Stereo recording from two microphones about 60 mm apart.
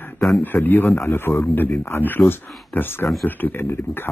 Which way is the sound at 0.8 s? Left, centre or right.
Left.